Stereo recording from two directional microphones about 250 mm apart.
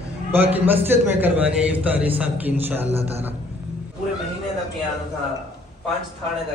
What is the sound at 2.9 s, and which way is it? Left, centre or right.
Speech, right.